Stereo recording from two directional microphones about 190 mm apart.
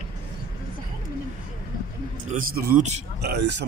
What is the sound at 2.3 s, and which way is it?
Speech, 50° right (ahead or behind).